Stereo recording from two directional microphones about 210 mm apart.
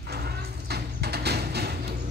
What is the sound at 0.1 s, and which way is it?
Vehicle, 50° right (ahead or behind).